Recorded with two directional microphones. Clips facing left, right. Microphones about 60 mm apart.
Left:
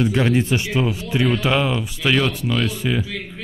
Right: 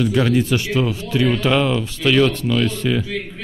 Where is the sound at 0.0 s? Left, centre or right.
Left.